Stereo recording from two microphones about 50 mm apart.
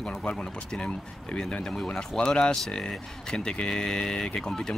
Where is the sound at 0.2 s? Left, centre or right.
Left.